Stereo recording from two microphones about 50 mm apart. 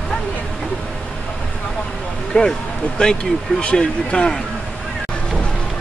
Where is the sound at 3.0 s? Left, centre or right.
Centre.